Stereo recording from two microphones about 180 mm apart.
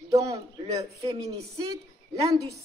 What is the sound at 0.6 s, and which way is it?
Speech, 35° right (ahead or behind).